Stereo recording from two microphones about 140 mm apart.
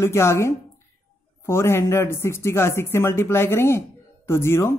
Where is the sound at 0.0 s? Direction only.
20° left (ahead or behind).